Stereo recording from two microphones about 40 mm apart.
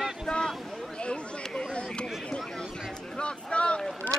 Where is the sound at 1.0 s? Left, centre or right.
Left.